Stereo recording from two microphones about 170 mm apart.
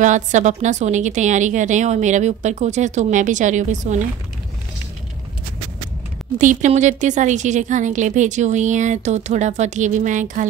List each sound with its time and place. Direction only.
0.0 s a woman's voice: 45° right (ahead or behind)
6.3 s a woman's voice: 45° right (ahead or behind)